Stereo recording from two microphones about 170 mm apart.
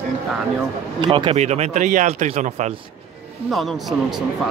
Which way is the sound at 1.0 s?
30° right (ahead or behind).